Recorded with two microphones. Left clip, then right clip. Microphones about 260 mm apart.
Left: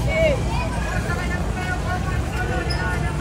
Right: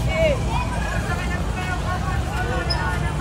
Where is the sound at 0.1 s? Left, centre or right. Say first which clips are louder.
Left 1 dB; centre.